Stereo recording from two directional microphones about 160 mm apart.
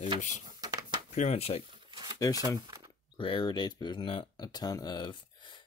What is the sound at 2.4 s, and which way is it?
Speech, 25° right (ahead or behind).